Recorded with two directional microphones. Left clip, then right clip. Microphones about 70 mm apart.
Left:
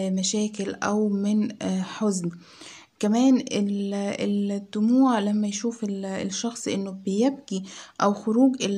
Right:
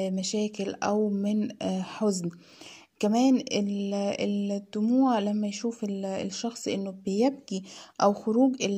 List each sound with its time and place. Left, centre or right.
0.0 s speech: right
7.1 s speech: right
8.0 s speech: right